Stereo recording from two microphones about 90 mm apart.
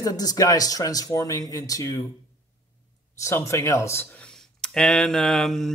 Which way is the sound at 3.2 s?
35° left (ahead or behind).